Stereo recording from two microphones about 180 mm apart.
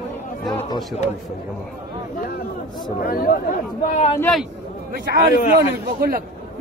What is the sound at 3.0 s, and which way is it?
Speech, 55° left (ahead or behind).